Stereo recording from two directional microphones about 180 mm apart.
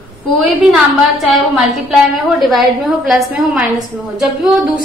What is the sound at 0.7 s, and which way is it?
A woman's voice, centre (ahead or behind).